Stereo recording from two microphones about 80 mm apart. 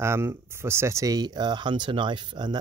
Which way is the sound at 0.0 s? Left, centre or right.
Right.